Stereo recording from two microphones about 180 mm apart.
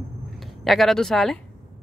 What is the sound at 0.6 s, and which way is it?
Speech, centre (ahead or behind).